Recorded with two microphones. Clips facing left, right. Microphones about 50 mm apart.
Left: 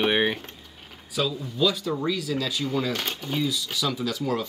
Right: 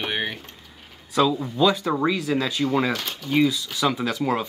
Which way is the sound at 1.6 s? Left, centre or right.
Right.